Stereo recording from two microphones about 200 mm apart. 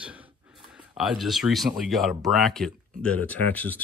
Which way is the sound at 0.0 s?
5° right (ahead or behind).